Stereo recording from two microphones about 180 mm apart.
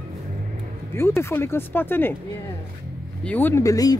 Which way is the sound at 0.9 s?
15° left (ahead or behind).